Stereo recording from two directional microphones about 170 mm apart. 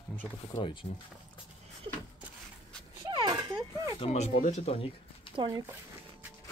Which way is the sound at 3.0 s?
25° right (ahead or behind).